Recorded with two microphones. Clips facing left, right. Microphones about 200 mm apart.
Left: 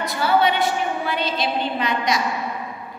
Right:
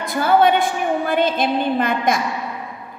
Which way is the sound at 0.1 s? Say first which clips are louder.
Right 5 dB; 50° right (ahead or behind).